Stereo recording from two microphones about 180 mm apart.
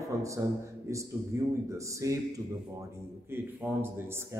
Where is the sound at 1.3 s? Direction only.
15° right (ahead or behind).